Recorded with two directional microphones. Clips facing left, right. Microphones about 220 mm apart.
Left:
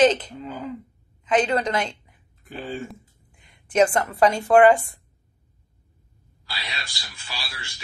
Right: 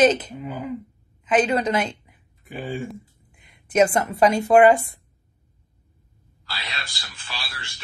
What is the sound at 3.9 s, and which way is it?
Speech, 10° right (ahead or behind).